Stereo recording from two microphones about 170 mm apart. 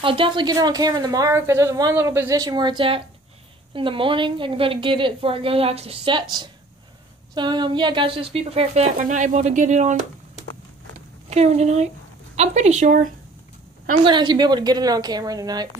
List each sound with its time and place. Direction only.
0.0 s a woman's voice: 30° right (ahead or behind)
7.3 s speech: 25° right (ahead or behind); by 10.0 s 45° right (ahead or behind)
11.2 s a woman's voice: 40° right (ahead or behind)
14.0 s a woman's voice: 25° right (ahead or behind)